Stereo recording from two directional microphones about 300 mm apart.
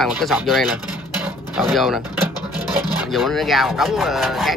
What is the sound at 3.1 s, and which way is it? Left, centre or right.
Speech, centre.